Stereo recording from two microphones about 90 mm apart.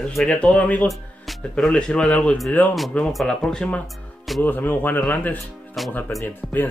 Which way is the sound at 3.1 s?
Centre (ahead or behind).